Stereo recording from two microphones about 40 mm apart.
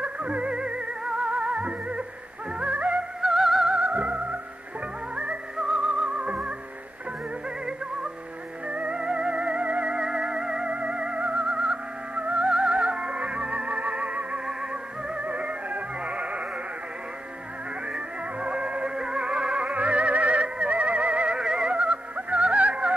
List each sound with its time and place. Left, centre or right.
0.0 s music: right
3.2 s music: centre
3.7 s music: right
8.6 s music: right
9.9 s music: centre
10.7 s theremin: right
12.2 s music: right
12.4 s music: right
14.4 s music: right
17.8 s music: right
21.4 s music: centre
21.7 s music: right